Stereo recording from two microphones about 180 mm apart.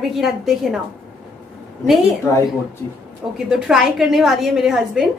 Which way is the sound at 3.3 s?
5° right (ahead or behind).